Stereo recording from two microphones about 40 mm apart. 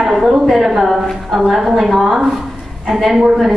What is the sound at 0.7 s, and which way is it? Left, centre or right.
A woman's voice, centre.